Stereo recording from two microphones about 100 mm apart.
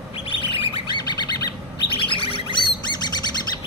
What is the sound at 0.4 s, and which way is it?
Bird, 60° left (ahead or behind).